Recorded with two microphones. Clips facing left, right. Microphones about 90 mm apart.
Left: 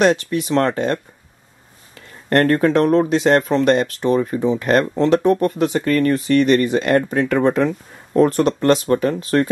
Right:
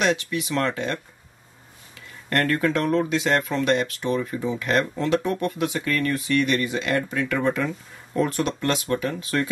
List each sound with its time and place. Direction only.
0.0 s speech: 40° left (ahead or behind)
2.2 s speech: 40° left (ahead or behind)